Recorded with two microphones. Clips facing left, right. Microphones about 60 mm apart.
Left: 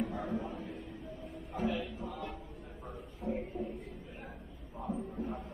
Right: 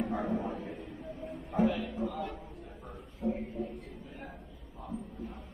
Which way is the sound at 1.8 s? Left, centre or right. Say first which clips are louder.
Right 5 dB; right.